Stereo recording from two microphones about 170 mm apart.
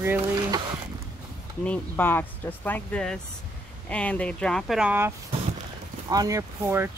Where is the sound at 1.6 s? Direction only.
10° left (ahead or behind); by 5.1 s 10° right (ahead or behind).